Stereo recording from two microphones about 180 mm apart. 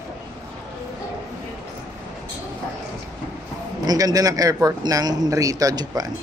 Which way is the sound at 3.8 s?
20° right (ahead or behind).